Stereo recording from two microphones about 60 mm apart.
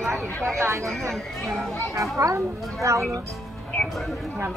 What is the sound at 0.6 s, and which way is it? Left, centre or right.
Speech, right.